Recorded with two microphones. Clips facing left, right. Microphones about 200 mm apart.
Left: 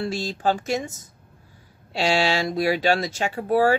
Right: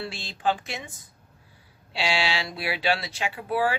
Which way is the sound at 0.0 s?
40° left (ahead or behind).